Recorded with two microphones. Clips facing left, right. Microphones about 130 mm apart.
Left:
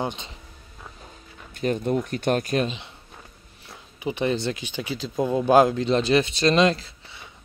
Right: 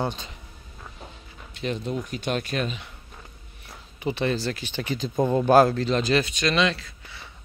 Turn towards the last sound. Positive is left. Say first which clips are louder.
# left 4 dB
turn(degrees=35)  # may be behind; listen again after turning